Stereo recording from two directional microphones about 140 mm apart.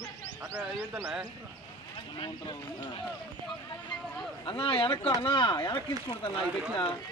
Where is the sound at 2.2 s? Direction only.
35° left (ahead or behind).